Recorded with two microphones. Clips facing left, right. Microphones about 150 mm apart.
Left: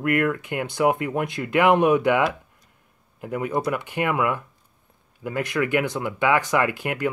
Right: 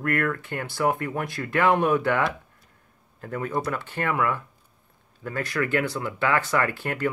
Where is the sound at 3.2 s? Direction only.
15° left (ahead or behind).